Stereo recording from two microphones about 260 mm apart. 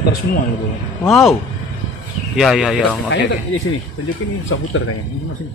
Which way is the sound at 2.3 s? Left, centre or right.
Centre.